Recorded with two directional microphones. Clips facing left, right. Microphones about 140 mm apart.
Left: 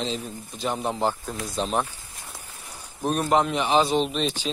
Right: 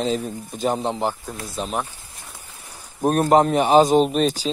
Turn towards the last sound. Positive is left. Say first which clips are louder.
# right 7 dB
turn(degrees=-40)  # may be behind; listen again after turning